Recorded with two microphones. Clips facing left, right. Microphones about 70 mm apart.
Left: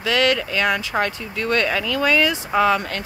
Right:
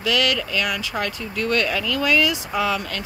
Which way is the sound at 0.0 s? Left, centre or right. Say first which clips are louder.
Left 3 dB; left.